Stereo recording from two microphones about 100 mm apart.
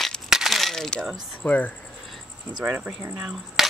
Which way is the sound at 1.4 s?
15° left (ahead or behind).